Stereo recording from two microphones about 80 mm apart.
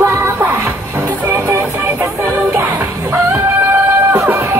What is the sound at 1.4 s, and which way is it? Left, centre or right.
Music, right.